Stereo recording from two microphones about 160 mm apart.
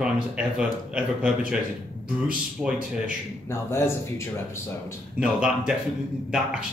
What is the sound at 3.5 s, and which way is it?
Speech, 15° left (ahead or behind).